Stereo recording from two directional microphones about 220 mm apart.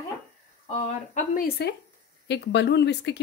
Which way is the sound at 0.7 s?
30° left (ahead or behind).